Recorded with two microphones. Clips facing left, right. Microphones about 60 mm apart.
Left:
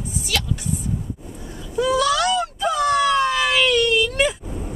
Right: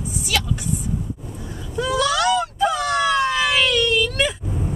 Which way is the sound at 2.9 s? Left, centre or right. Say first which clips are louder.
Left 1 dB; right.